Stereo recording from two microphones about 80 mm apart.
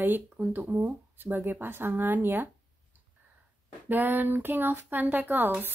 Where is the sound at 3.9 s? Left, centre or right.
Right.